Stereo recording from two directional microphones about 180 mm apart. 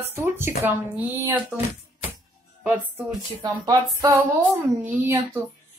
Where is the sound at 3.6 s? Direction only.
20° right (ahead or behind).